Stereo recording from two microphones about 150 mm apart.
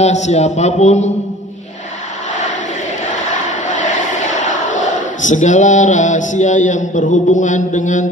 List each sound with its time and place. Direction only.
0.0 s a man's voice: 50° left (ahead or behind)
3.6 s speech: 55° left (ahead or behind)